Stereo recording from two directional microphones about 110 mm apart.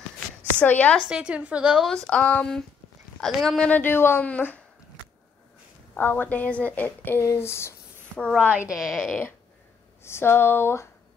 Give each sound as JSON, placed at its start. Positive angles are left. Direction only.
{"t": 0.6, "sound": "a woman's voice", "side_deg": 15}
{"t": 1.0, "sound": "a woman's voice", "side_deg": -10}
{"t": 1.9, "sound": "a woman's voice", "side_deg": 5}
{"t": 3.6, "sound": "a woman's voice", "side_deg": 15}
{"t": 5.9, "sound": "a woman's voice", "side_deg": 15}
{"t": 8.4, "sound": "a woman's voice", "side_deg": -15}
{"t": 8.7, "sound": "speech", "side_deg": -5}
{"t": 10.0, "sound": "speech", "side_deg": 20}